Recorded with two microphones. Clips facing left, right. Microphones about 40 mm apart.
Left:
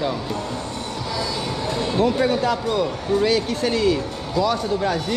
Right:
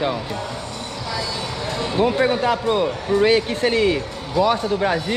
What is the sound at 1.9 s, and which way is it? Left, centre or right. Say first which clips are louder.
Speech: right 2 dB; right.